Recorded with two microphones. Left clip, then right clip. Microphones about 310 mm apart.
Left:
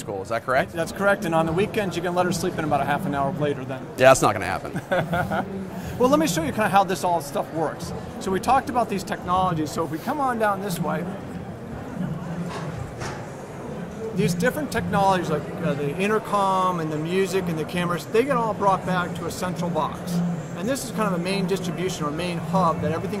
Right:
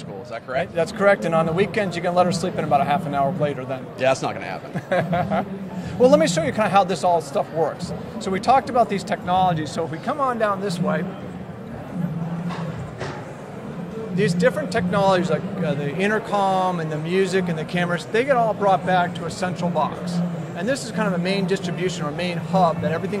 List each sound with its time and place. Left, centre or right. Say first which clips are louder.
0.3 s speech: left 3 dB; left
0.7 s speech: right 4 dB; right
4.0 s speech: left 6 dB; left
4.8 s speech: right 3 dB; right
14.1 s a man's voice: right 4 dB; right